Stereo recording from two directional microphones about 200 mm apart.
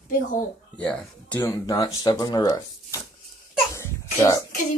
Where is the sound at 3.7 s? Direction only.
15° left (ahead or behind).